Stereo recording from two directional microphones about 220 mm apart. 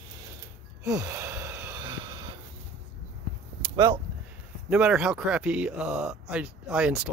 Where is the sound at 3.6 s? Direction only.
20° right (ahead or behind).